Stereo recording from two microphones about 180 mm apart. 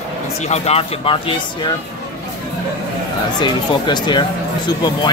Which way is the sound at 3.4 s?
25° left (ahead or behind).